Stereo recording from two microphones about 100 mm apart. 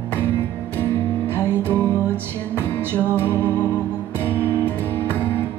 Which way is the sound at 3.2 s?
20° left (ahead or behind).